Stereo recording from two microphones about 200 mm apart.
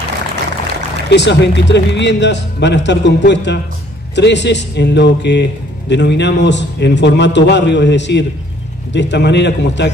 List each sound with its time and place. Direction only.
1.1 s speech: 60° left (ahead or behind)